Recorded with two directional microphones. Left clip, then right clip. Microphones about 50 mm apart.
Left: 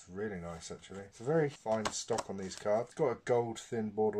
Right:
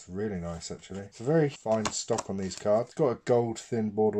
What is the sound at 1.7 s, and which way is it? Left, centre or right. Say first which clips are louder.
Speech: right 6 dB; centre.